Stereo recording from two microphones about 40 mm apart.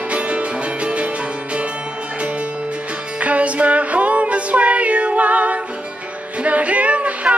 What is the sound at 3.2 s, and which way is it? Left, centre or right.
Music, right.